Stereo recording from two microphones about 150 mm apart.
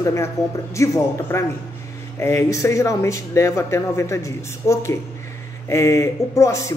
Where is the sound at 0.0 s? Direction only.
20° left (ahead or behind).